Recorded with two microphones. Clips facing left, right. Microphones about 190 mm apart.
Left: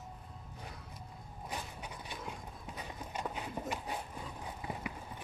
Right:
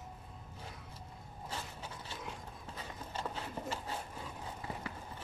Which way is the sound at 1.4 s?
15° left (ahead or behind).